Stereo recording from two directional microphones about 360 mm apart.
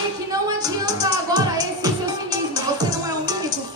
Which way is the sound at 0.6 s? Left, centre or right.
Centre.